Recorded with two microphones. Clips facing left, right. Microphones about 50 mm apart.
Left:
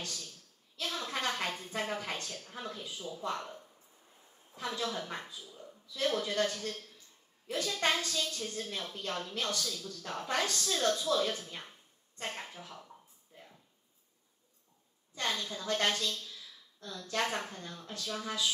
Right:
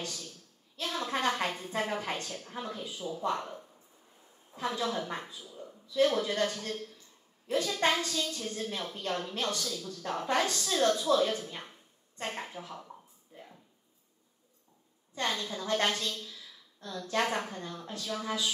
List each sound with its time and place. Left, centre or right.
0.0 s a sound: right
0.8 s a woman's voice: right
4.6 s speech: right
4.8 s speech: centre
15.1 s speech: right